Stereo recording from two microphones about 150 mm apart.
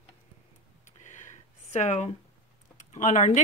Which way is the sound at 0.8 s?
55° left (ahead or behind).